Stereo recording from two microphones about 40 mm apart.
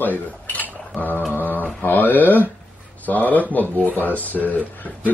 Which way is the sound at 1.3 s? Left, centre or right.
Left.